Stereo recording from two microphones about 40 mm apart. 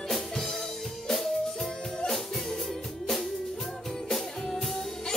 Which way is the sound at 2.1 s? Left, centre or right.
Centre.